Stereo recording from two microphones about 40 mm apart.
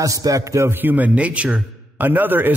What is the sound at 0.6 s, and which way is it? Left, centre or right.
Speech, right.